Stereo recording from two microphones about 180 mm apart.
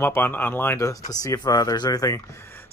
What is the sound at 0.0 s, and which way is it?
Speech, 10° left (ahead or behind).